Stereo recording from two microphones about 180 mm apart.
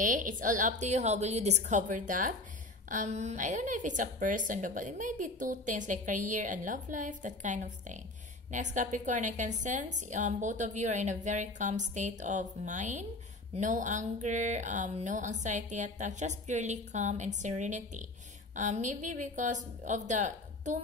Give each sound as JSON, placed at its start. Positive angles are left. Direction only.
{"t": 0.0, "sound": "a woman's voice", "side_deg": -45}